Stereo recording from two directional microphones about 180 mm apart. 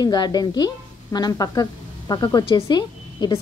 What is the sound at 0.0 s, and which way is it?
A woman's voice, 20° left (ahead or behind).